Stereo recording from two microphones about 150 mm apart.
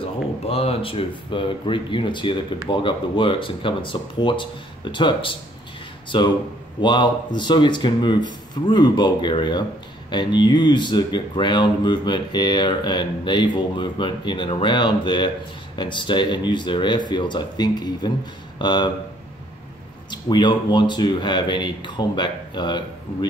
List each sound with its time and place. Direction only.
0.5 s speech: 40° left (ahead or behind)
20.1 s speech: 30° left (ahead or behind)